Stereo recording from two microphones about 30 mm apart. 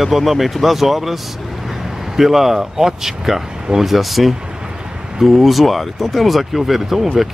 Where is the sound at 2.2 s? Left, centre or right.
Centre.